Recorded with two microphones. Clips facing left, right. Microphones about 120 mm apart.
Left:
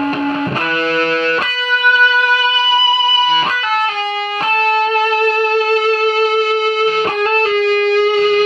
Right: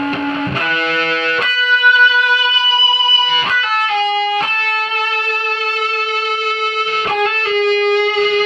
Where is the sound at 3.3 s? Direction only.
40° left (ahead or behind).